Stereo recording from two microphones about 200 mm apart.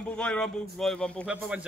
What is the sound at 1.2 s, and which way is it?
Speech, 5° right (ahead or behind).